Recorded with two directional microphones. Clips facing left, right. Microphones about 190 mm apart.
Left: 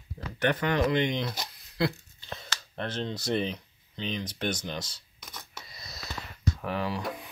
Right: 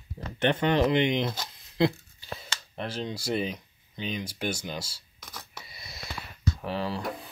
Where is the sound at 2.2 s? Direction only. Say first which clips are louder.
Right 1 dB; 5° right (ahead or behind).